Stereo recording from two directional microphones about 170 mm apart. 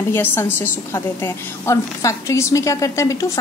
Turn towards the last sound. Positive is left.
turn(degrees=20)  # may be behind; listen again after turning